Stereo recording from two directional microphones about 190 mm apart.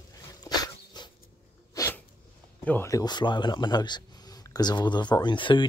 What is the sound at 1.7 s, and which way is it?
Sneeze, 15° left (ahead or behind).